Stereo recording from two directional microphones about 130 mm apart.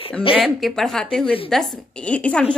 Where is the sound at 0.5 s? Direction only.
Centre (ahead or behind).